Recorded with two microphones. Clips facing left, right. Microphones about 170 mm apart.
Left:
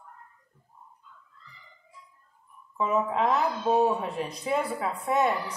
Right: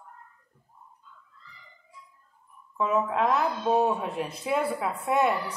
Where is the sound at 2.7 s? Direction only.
Centre (ahead or behind).